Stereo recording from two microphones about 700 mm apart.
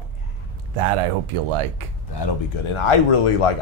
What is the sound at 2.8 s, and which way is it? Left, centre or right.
Speech, left.